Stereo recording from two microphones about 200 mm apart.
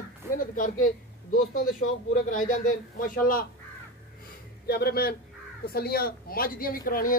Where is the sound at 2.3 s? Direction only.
45° left (ahead or behind).